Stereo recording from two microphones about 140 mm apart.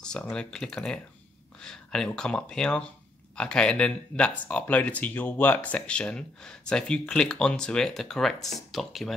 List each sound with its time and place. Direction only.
0.0 s speech: 5° left (ahead or behind)